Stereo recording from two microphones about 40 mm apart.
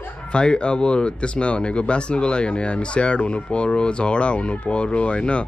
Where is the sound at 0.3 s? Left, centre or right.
Left.